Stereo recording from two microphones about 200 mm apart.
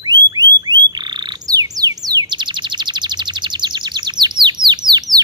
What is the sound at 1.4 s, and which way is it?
Chirp, 20° right (ahead or behind).